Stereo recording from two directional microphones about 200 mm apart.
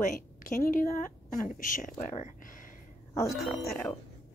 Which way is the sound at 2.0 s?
40° left (ahead or behind).